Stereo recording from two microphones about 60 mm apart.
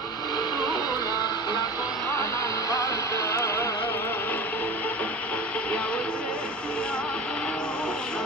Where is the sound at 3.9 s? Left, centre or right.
Left.